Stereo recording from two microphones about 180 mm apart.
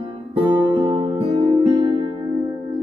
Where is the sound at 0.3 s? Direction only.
25° right (ahead or behind).